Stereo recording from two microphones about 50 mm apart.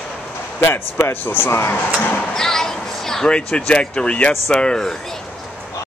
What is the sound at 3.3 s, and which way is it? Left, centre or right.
Speech, centre.